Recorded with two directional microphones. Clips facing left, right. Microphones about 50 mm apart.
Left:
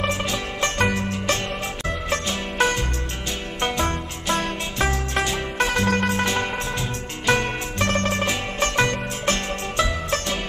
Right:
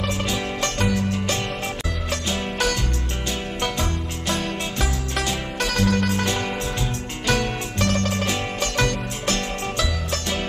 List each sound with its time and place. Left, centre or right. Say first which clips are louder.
0.7 s music: even; left
2.6 s music: left 6 dB; left
7.2 s zither: left 2 dB; left
8.5 s music: left 4 dB; left